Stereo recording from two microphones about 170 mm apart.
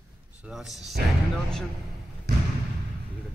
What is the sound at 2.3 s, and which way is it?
Basketball bounce, 75° right (ahead or behind).